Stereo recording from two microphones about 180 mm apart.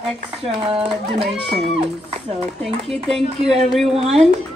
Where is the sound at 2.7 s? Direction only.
35° right (ahead or behind).